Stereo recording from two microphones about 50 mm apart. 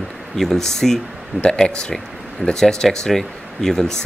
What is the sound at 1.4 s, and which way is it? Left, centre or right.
Speech, centre.